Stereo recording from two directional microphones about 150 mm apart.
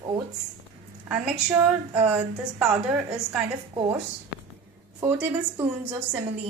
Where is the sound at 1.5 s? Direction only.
15° right (ahead or behind).